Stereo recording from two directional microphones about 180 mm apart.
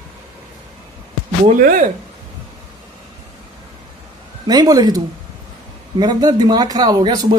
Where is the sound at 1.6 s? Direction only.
50° right (ahead or behind).